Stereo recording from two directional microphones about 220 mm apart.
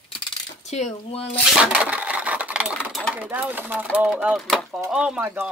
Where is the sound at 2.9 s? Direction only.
Centre (ahead or behind).